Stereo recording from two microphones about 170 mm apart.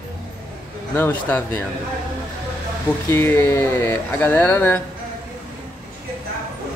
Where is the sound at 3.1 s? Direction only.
15° left (ahead or behind).